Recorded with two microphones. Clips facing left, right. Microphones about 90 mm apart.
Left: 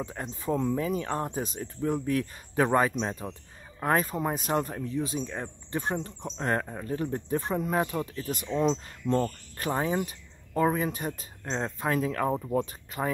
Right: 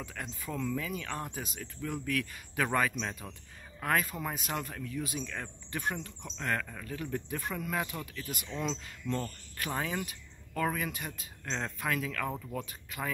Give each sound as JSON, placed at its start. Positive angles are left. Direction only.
{"t": 0.0, "sound": "speech", "side_deg": 30}
{"t": 11.4, "sound": "speech", "side_deg": 25}